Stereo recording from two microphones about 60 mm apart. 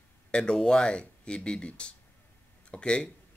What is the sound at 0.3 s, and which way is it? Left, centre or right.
A man's voice, centre.